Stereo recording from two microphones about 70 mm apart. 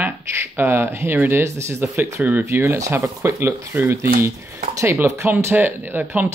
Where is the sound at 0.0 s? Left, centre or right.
Right.